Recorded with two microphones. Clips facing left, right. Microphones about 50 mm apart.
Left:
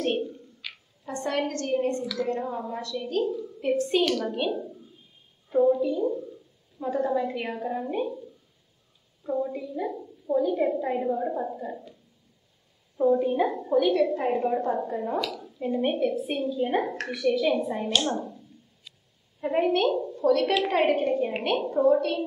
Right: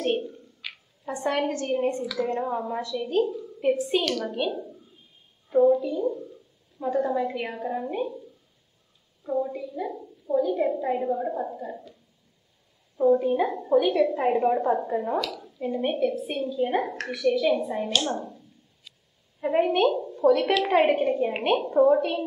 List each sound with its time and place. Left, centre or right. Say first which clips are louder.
0.0 s a woman's voice: right 1 dB; centre
3.3 s a woman's voice: right 2 dB; centre
9.2 s a woman's voice: right 1 dB; centre
12.9 s a woman's voice: right 2 dB; centre
15.2 s a woman's voice: even; centre
19.4 s a woman's voice: right 2 dB; centre